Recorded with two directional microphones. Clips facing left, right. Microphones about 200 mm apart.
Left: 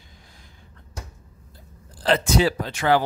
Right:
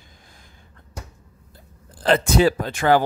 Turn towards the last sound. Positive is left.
turn(degrees=-50)  # may be behind; listen again after turning